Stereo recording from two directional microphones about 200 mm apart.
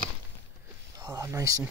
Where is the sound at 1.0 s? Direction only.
20° right (ahead or behind).